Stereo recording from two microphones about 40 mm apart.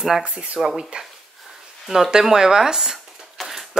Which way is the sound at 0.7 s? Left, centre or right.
Right.